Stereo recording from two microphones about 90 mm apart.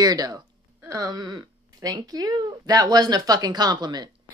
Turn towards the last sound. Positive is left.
turn(degrees=-50)  # may be behind; listen again after turning